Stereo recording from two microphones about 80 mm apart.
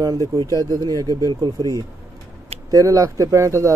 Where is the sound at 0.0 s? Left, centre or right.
Right.